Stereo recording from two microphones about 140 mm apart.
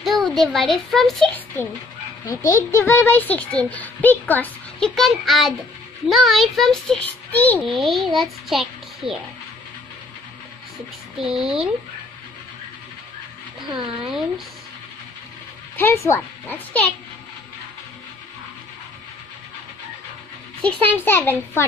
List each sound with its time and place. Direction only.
0.0 s a child's voice: centre (ahead or behind)
2.2 s a child's voice: 25° left (ahead or behind)
7.6 s a child's voice: centre (ahead or behind)
11.1 s a child's voice: centre (ahead or behind)
13.7 s speech: 35° right (ahead or behind)
15.7 s a child's voice: 15° left (ahead or behind)
20.6 s a child's voice: 15° left (ahead or behind)